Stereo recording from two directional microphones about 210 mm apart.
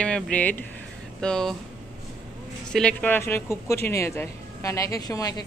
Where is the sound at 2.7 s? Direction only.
5° left (ahead or behind).